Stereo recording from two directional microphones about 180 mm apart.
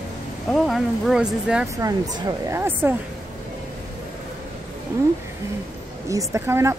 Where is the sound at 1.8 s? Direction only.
20° right (ahead or behind).